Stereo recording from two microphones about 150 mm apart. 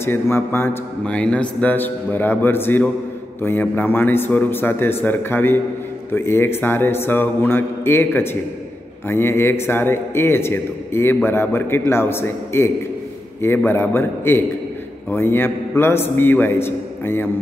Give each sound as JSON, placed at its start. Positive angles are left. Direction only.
{"t": 0.0, "sound": "speech", "side_deg": 15}